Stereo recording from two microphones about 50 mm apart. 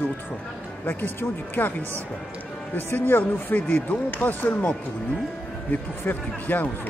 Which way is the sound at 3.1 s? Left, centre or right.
Left.